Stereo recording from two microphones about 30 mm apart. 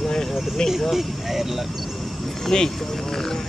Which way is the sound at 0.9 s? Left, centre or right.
Centre.